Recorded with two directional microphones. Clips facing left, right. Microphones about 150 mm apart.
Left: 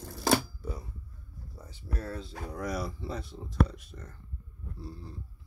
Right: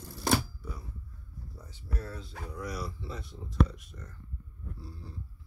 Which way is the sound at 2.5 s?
50° left (ahead or behind).